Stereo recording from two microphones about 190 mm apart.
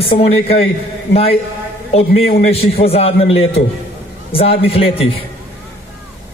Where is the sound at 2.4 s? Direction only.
35° left (ahead or behind).